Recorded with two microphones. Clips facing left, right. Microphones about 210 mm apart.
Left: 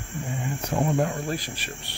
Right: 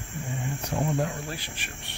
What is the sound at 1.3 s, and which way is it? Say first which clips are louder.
Speech: left 7 dB; 40° left (ahead or behind).